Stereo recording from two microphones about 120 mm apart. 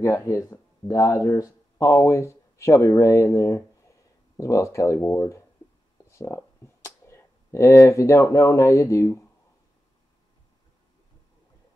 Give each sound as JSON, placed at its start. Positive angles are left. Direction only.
{"t": 0.0, "sound": "speech", "side_deg": 25}